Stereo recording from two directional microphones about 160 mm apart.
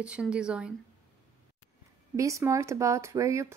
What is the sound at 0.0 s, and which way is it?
Speech, 5° right (ahead or behind).